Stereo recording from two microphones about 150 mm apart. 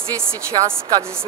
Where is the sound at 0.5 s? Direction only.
35° right (ahead or behind).